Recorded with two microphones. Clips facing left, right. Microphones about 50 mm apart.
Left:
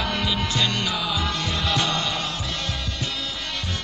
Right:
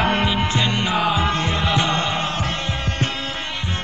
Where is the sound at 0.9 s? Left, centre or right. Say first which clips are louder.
Right 7 dB; right.